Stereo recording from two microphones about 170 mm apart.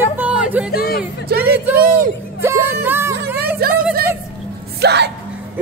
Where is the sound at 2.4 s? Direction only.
15° right (ahead or behind).